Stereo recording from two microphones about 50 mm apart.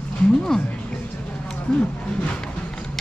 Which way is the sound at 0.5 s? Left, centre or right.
Centre.